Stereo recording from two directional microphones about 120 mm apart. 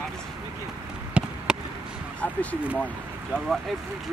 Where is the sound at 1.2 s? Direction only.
10° right (ahead or behind).